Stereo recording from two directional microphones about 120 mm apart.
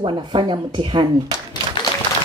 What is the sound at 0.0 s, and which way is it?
Speech, 40° right (ahead or behind).